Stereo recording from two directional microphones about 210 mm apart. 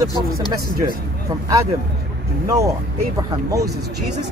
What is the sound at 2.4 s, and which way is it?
Speech, 15° right (ahead or behind).